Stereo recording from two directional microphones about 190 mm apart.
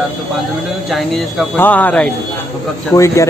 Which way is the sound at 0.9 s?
Centre (ahead or behind).